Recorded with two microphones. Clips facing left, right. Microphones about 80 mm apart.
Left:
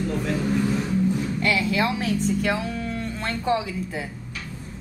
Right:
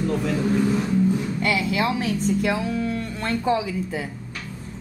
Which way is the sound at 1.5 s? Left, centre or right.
Centre.